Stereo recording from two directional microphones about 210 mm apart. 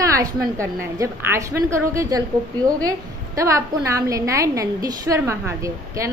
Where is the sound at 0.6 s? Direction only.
15° right (ahead or behind).